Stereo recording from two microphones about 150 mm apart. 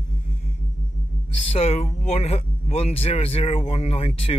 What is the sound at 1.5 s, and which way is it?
Speech, 45° left (ahead or behind).